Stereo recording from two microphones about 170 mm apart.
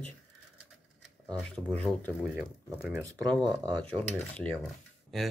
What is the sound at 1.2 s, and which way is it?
Speech, 5° left (ahead or behind).